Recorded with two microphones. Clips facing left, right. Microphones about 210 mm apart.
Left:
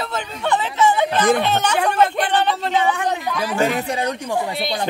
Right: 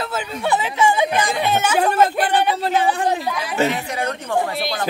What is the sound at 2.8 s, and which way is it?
Speech, 35° right (ahead or behind).